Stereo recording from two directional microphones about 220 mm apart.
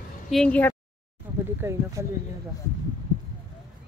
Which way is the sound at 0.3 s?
5° left (ahead or behind).